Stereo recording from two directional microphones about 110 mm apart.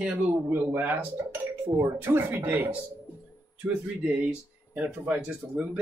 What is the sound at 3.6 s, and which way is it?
Speech, 5° right (ahead or behind).